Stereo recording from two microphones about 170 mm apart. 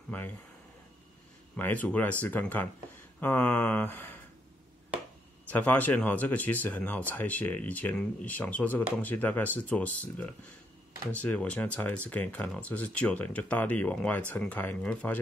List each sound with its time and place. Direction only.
1.6 s speech: 10° left (ahead or behind)
5.5 s speech: 10° left (ahead or behind)